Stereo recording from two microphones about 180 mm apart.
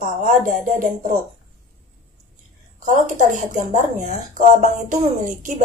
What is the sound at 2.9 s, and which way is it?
A woman's voice, 45° right (ahead or behind).